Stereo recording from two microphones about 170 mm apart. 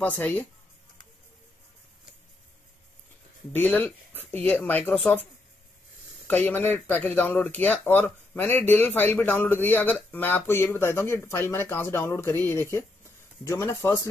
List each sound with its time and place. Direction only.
0.0 s speech: 10° left (ahead or behind)
3.5 s speech: 10° left (ahead or behind)
6.2 s speech: 10° left (ahead or behind)